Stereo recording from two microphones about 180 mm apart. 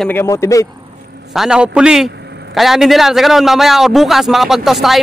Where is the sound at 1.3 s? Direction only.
5° right (ahead or behind).